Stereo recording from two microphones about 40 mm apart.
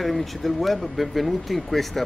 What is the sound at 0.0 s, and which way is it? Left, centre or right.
Speech, centre.